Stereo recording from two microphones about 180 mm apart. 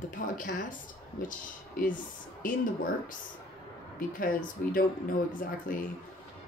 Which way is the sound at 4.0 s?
50° left (ahead or behind).